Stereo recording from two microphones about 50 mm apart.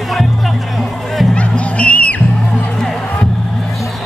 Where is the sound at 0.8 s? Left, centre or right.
Centre.